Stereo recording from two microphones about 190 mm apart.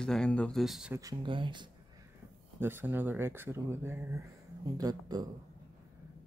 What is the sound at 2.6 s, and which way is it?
Speech, 10° right (ahead or behind).